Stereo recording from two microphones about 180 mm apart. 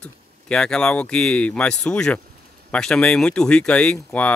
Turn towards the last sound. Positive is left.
turn(degrees=5)  # may be behind; listen again after turning